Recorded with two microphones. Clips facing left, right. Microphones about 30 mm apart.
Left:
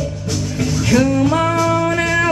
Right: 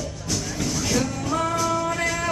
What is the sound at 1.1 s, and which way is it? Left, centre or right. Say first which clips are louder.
Music: left 9 dB; left.